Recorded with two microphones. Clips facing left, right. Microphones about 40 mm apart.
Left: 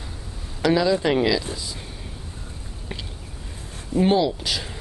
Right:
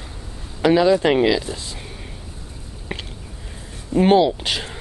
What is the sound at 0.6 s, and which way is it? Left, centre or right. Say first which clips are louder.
Speech: right 4 dB; right.